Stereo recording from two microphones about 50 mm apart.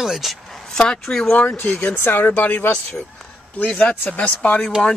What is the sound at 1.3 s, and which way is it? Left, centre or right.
Speech, left.